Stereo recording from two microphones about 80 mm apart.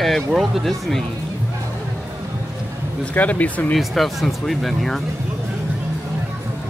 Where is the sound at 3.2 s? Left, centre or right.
Centre.